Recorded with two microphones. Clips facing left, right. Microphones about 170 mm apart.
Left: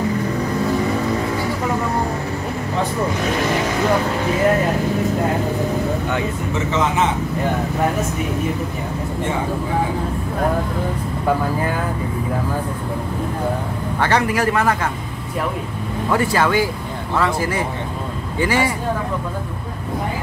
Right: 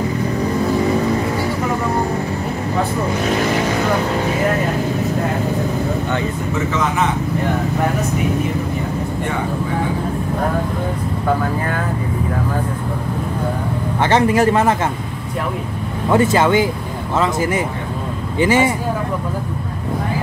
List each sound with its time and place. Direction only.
13.9 s speech: 20° right (ahead or behind)
16.1 s speech: 20° right (ahead or behind)